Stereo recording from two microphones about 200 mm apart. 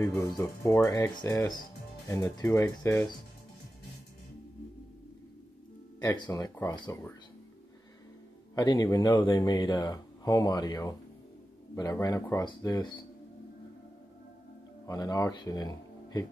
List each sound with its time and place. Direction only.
0.2 s speech: 15° left (ahead or behind)
5.9 s speech: 20° left (ahead or behind)
8.5 s speech: 20° left (ahead or behind)
14.9 s speech: 20° left (ahead or behind)